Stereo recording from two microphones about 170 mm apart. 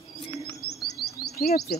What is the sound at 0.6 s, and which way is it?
Chirp, 65° left (ahead or behind).